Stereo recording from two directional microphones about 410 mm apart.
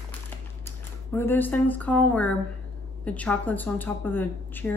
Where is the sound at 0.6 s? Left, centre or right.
Centre.